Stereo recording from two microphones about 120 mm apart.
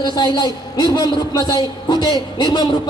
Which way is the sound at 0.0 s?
35° left (ahead or behind).